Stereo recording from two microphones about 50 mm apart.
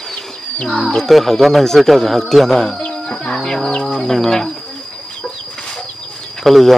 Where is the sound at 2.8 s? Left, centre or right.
Centre.